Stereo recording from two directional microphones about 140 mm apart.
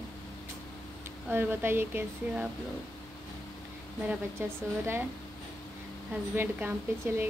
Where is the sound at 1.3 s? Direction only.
15° right (ahead or behind).